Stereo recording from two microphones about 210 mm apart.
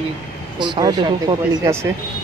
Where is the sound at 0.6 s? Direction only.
20° right (ahead or behind).